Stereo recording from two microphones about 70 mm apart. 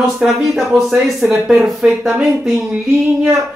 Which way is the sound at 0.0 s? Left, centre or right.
Centre.